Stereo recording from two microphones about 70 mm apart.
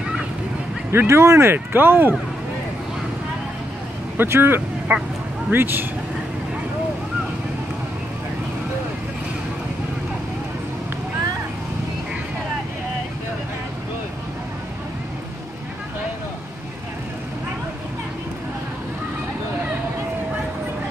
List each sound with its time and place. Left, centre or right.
0.9 s speech: right
4.2 s speech: right
4.9 s speech: right